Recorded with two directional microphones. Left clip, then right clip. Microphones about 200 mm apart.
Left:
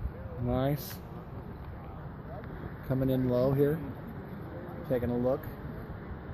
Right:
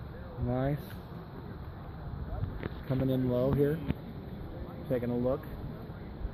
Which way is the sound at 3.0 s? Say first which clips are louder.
Left 2 dB; 5° left (ahead or behind).